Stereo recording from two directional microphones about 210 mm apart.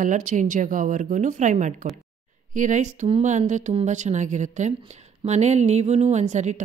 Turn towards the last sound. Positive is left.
turn(degrees=-35)  # may be behind; listen again after turning